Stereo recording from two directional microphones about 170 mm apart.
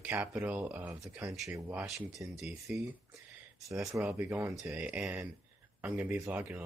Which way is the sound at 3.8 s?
5° right (ahead or behind).